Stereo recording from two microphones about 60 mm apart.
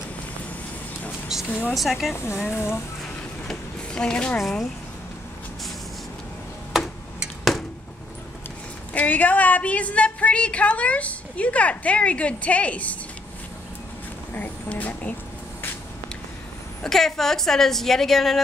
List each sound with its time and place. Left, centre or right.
1.3 s a woman's voice: centre
2.5 s speech: left
3.4 s a sound: centre
4.4 s a woman's voice: centre
7.2 s arrow: centre
8.9 s a woman's voice: left
14.3 s speech: left
16.8 s a woman's voice: centre